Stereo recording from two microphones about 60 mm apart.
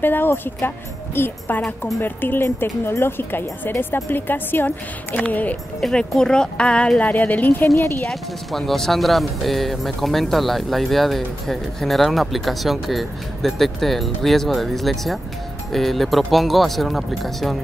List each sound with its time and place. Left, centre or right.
0.0 s speech: left
5.8 s speech: centre; by 7.6 s left
7.6 s a woman's voice: left
8.1 s speech: centre